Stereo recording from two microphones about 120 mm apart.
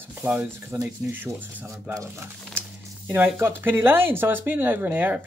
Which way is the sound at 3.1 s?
20° right (ahead or behind).